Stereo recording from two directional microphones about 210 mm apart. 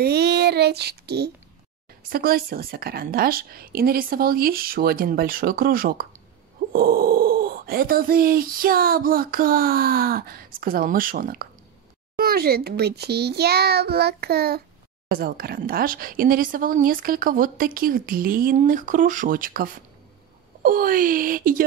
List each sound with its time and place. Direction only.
0.0 s child singing: 50° right (ahead or behind)
2.1 s speech: 45° right (ahead or behind)